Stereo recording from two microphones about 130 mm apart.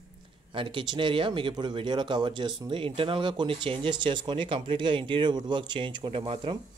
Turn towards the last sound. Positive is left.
turn(degrees=-40)  # may be behind; listen again after turning